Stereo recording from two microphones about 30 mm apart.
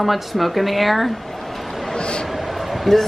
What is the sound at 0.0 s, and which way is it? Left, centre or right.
Speech, centre.